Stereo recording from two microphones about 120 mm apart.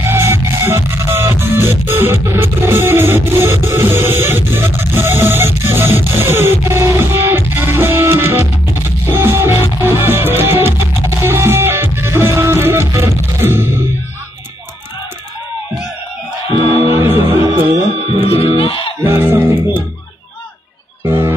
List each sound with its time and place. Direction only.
0.0 s music: 20° right (ahead or behind)
16.9 s speech: 20° right (ahead or behind)
18.2 s music: 55° left (ahead or behind)
19.0 s music: 20° right (ahead or behind)
21.0 s music: 20° right (ahead or behind)